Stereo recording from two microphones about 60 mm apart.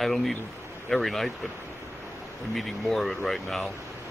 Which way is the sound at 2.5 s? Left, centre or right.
Centre.